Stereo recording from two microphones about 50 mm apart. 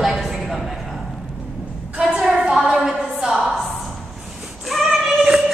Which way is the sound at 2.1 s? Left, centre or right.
Centre.